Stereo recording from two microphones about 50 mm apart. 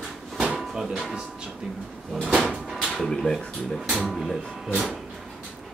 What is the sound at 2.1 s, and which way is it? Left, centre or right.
Sliding door, centre.